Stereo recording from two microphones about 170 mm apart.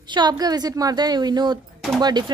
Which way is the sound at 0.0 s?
25° right (ahead or behind).